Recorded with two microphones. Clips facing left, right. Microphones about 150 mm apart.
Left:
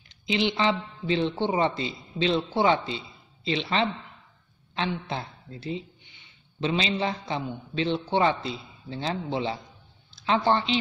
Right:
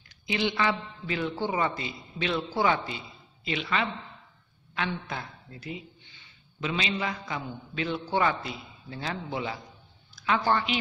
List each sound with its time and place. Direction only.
0.1 s a woman's voice: 20° left (ahead or behind)